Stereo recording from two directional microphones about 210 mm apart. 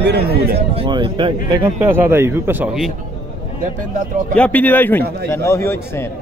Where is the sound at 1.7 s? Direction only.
10° right (ahead or behind).